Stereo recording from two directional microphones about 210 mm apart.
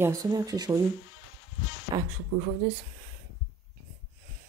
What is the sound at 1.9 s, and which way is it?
Speech, 20° right (ahead or behind).